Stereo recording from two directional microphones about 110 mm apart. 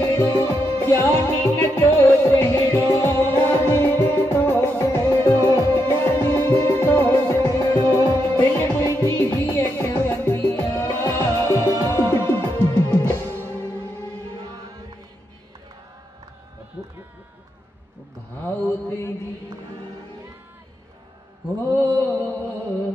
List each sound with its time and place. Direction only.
0.2 s music: 25° left (ahead or behind)
18.4 s mantra: 20° left (ahead or behind)
21.5 s mantra: 20° left (ahead or behind)